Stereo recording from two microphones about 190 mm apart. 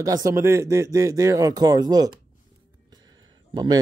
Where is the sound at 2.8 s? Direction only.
20° right (ahead or behind).